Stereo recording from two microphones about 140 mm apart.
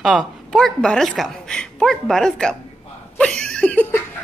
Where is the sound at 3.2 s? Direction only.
5° left (ahead or behind).